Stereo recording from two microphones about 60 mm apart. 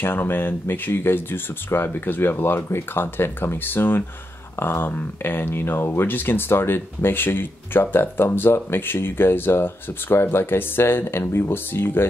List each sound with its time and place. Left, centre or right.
0.0 s speech: left